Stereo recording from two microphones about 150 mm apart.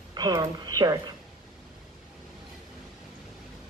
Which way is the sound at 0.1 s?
25° right (ahead or behind).